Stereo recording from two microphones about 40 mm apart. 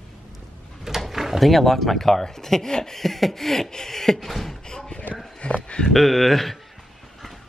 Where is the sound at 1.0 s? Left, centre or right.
Centre.